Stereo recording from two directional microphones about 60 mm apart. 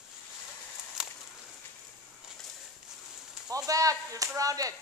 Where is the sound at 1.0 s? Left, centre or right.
Centre.